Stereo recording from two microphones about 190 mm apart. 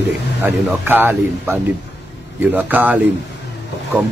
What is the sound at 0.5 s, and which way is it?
Speech, 10° right (ahead or behind).